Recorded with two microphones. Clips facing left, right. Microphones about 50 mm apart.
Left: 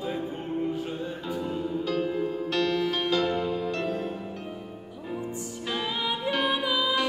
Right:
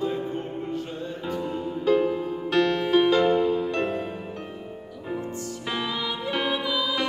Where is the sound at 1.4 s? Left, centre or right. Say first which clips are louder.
Left 1 dB; centre.